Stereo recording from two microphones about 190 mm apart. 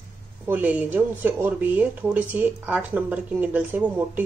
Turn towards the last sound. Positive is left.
turn(degrees=-10)  # may be behind; listen again after turning